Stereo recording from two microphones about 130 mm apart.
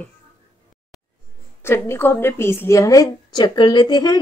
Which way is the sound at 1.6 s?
20° left (ahead or behind).